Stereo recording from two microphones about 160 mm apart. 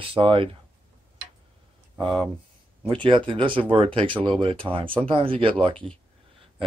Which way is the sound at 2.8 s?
30° right (ahead or behind).